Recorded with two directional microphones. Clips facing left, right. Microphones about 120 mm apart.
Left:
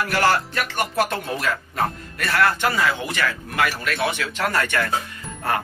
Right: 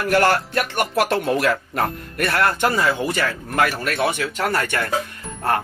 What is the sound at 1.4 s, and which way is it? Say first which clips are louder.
Speech: right 3 dB; 55° right (ahead or behind).